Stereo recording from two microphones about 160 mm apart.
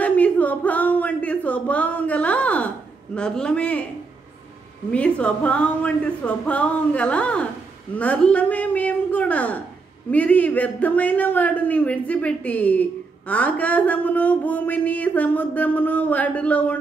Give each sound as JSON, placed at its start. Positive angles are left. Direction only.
{"t": 0.0, "sound": "a sound", "side_deg": 10}
{"t": 3.2, "sound": "a man's voice", "side_deg": 5}
{"t": 4.9, "sound": "a woman's voice", "side_deg": 10}